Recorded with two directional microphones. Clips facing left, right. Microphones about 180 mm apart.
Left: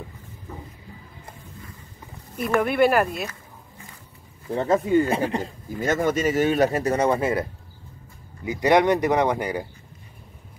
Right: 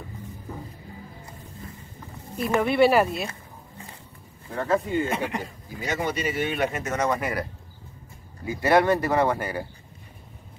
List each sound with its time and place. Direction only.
2.6 s speech: centre (ahead or behind)
4.6 s speech: 40° left (ahead or behind)
8.5 s speech: 15° left (ahead or behind)